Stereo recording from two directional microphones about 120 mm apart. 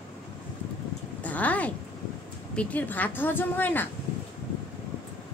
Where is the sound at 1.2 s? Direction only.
15° left (ahead or behind).